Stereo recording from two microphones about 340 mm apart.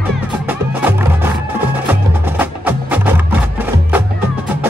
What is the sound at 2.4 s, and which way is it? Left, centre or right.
Music, centre.